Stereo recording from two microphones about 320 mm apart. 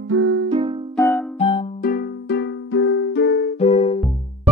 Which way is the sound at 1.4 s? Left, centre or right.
Centre.